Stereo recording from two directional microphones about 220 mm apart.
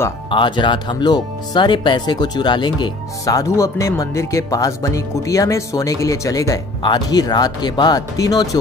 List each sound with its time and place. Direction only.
0.3 s speech: 20° left (ahead or behind)